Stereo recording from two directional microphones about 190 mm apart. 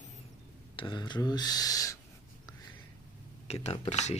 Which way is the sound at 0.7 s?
25° left (ahead or behind).